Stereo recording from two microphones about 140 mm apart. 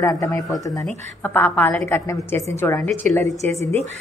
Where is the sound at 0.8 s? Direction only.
15° left (ahead or behind).